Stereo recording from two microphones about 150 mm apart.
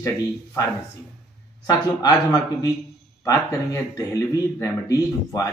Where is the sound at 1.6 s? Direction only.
25° left (ahead or behind).